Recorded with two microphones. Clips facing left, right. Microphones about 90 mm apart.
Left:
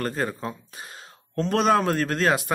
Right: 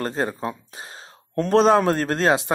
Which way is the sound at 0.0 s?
25° right (ahead or behind).